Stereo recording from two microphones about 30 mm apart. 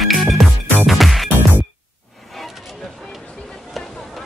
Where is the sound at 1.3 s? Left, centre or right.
Right.